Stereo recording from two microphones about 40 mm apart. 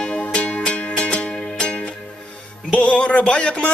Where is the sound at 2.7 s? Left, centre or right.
Left.